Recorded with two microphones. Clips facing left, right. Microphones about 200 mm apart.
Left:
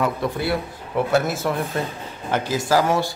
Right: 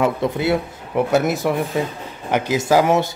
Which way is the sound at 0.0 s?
20° right (ahead or behind).